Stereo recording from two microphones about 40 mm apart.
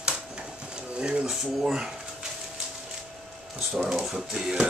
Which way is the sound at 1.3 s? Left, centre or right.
Centre.